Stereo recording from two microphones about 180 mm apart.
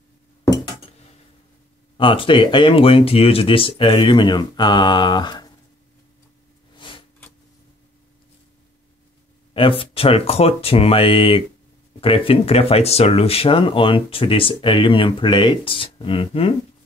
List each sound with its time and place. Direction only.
2.0 s speech: 30° left (ahead or behind)
6.8 s a sound: 30° left (ahead or behind)
9.5 s speech: 30° left (ahead or behind)